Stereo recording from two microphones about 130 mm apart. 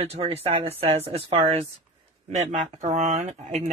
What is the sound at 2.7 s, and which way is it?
Speech, 55° right (ahead or behind).